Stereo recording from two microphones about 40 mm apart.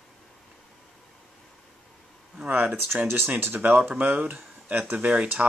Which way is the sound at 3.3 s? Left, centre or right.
Right.